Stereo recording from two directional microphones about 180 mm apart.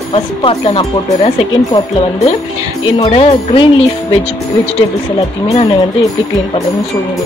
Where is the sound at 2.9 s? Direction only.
30° left (ahead or behind).